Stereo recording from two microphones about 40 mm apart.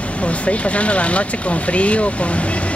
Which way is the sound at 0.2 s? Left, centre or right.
Left.